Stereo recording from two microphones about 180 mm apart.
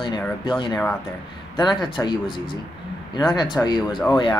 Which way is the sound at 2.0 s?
25° left (ahead or behind).